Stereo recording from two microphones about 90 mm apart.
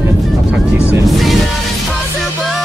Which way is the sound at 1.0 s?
Centre (ahead or behind).